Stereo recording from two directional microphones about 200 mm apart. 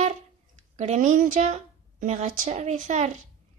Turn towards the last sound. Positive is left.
turn(degrees=-35)  # may be behind; listen again after turning